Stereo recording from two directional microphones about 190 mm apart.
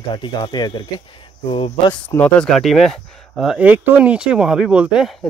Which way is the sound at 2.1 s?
5° left (ahead or behind).